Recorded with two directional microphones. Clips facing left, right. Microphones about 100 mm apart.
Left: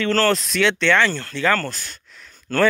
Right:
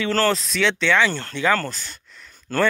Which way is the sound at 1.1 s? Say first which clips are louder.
Even; 25° right (ahead or behind).